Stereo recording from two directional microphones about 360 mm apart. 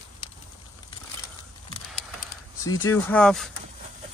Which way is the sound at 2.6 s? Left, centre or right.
Centre.